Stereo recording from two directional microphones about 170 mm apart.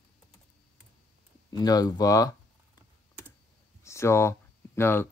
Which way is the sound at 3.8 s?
15° left (ahead or behind).